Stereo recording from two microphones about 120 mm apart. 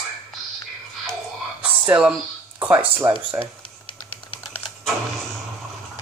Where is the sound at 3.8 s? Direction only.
45° left (ahead or behind).